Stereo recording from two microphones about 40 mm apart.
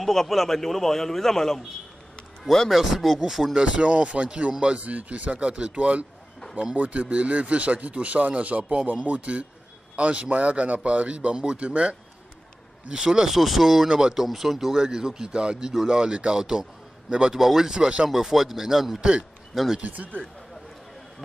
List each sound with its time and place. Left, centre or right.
0.0 s a man's voice: centre
2.7 s a man's voice: centre
3.5 s speech: right
4.8 s a man's voice: right
12.8 s speech: centre
17.4 s speech: centre
17.7 s speech: right
18.0 s speech: centre
19.8 s speech: right